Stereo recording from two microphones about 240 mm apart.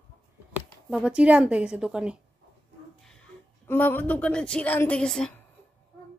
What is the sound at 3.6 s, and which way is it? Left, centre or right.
A woman's voice, centre.